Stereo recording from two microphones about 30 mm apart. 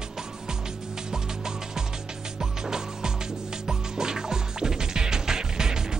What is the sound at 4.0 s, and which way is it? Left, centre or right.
Music, centre.